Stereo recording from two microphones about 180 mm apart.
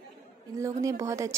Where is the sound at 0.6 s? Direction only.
15° right (ahead or behind).